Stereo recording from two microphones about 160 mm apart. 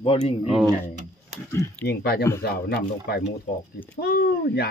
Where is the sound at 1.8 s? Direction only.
80° left.